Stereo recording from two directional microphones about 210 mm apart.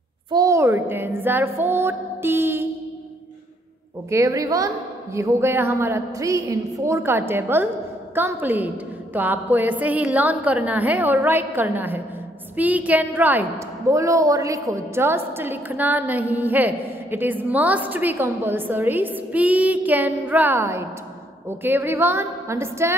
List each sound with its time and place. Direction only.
0.3 s a woman's voice: 15° right (ahead or behind)
4.1 s a woman's voice: 15° right (ahead or behind)